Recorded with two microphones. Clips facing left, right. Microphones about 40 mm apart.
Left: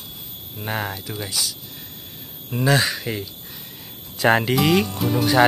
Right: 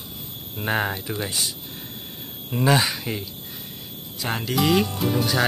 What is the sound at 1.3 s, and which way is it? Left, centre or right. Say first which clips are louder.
Speech: left 1 dB; right.